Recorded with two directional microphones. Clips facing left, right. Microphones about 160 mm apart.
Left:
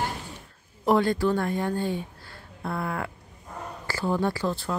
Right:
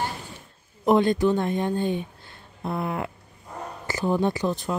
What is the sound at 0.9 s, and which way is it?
Speech, 20° right (ahead or behind).